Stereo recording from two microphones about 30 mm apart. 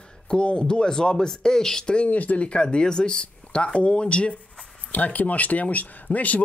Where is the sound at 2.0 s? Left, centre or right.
Left.